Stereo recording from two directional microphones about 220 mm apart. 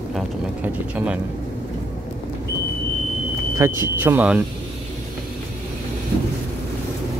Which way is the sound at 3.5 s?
10° right (ahead or behind).